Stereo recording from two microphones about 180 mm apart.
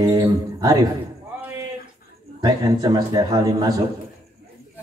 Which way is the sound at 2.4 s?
20° right (ahead or behind).